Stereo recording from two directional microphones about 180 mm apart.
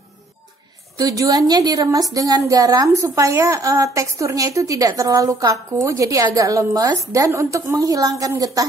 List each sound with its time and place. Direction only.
0.9 s a woman's voice: 20° right (ahead or behind)